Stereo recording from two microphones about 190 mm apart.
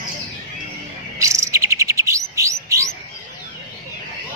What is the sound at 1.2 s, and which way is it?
Chirp, 15° right (ahead or behind).